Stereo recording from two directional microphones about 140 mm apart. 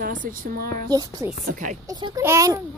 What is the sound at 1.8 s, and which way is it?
Speech, 30° right (ahead or behind).